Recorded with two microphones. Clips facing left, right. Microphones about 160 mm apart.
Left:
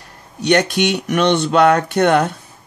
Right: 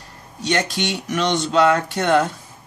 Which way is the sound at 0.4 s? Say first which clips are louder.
Left 7 dB; 65° left (ahead or behind).